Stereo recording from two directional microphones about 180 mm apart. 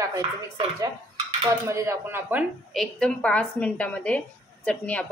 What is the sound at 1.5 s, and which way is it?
Speech, 15° right (ahead or behind).